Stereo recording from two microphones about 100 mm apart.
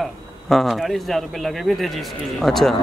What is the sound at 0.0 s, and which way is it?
Speech, centre (ahead or behind).